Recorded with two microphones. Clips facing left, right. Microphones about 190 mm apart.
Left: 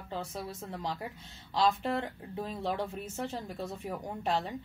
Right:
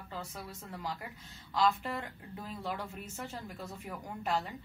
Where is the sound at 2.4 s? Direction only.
30° left (ahead or behind).